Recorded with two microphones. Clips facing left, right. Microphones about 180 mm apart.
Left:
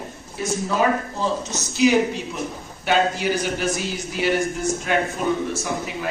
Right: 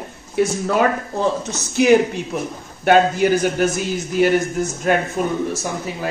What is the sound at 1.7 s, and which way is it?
A man's voice, 55° right (ahead or behind).